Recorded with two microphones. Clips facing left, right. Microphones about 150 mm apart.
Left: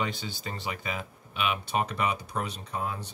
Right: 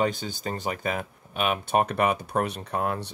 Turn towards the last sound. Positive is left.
turn(degrees=-60)  # may be behind; listen again after turning